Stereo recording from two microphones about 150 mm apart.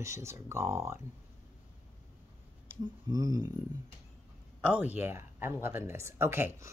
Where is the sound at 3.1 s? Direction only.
25° right (ahead or behind).